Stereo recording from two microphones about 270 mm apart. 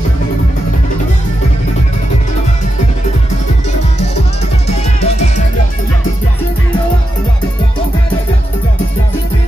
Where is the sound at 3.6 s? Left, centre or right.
Left.